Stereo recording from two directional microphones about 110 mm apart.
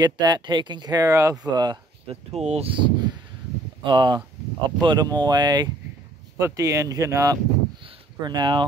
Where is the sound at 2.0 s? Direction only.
75° right (ahead or behind).